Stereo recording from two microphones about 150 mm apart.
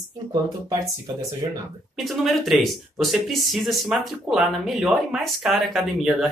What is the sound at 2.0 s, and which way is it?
Speech, centre (ahead or behind).